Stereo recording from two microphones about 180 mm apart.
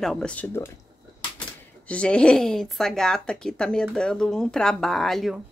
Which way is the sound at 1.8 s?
5° left (ahead or behind).